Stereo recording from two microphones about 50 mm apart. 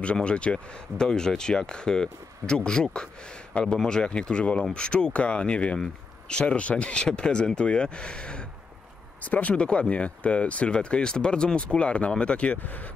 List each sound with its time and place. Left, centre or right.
0.0 s speech: left
9.2 s speech: left
12.5 s speech: left